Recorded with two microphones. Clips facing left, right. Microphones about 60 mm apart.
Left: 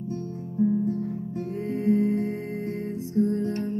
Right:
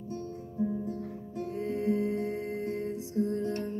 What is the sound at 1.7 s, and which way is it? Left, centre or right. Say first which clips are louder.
Music: left 7 dB; left.